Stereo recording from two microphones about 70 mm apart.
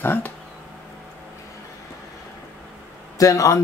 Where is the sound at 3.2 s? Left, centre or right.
Left.